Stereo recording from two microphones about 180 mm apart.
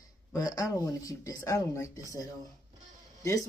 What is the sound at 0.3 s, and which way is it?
Speech, 20° left (ahead or behind).